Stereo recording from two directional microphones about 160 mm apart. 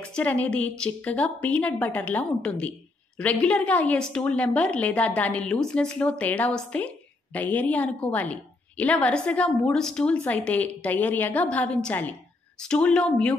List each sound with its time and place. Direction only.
0.0 s a woman's voice: 10° left (ahead or behind)